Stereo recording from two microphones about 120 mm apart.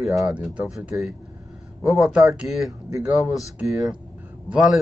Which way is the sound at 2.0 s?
Centre (ahead or behind).